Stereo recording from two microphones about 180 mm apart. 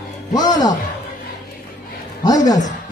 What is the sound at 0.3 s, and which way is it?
Speech, 20° left (ahead or behind).